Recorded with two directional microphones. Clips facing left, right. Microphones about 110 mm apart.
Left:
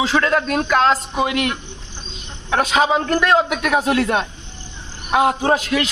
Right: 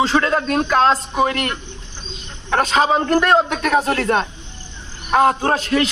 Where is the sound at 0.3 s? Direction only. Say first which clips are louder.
Even; 30° right (ahead or behind).